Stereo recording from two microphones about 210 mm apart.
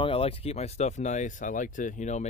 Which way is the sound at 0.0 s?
25° left (ahead or behind).